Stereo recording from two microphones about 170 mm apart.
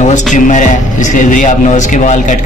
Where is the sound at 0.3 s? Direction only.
45° left (ahead or behind).